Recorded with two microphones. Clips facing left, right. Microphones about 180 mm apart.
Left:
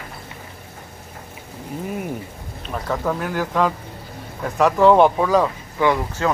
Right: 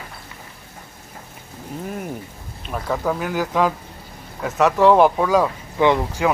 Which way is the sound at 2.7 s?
5° right (ahead or behind).